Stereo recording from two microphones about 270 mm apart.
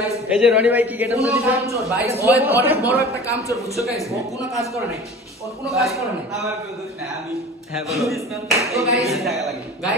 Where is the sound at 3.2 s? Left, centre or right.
Centre.